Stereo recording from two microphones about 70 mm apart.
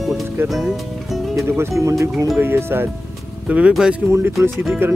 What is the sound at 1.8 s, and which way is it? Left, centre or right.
Speech, right.